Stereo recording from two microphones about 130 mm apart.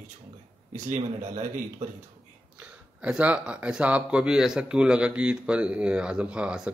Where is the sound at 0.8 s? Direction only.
85° right.